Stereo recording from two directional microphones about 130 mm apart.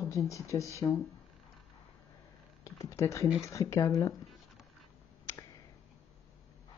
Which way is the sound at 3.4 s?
25° left (ahead or behind).